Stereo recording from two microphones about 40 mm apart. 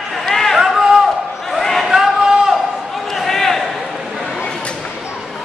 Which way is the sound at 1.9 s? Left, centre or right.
Centre.